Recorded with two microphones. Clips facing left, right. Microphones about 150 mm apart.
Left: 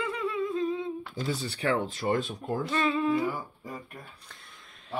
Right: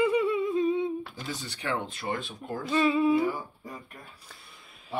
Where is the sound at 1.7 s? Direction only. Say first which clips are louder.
Left 4 dB; 40° left (ahead or behind).